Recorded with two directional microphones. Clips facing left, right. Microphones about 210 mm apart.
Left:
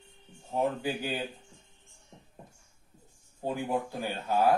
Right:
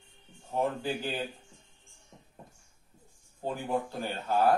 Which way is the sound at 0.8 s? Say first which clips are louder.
Left 1 dB; 10° left (ahead or behind).